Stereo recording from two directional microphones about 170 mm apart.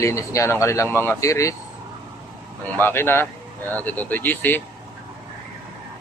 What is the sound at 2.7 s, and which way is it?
Speech, 10° left (ahead or behind).